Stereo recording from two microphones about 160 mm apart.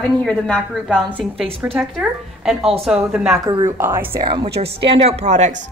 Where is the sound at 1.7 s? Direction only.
5° right (ahead or behind).